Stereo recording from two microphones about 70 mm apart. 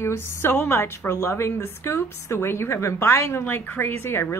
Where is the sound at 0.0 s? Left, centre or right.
Left.